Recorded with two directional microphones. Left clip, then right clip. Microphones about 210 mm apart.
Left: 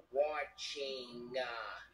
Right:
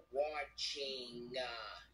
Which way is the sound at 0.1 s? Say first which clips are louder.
Left 4 dB; 15° right (ahead or behind).